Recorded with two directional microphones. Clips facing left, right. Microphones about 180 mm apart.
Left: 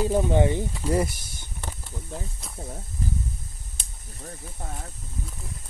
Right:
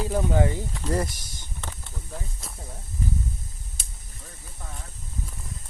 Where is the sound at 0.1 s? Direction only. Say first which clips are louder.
Left 3 dB; 20° left (ahead or behind).